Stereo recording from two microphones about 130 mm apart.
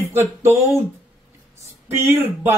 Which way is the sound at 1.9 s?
15° right (ahead or behind).